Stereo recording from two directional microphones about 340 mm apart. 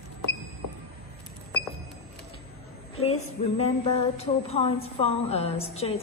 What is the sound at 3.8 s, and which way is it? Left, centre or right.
A woman's voice, centre.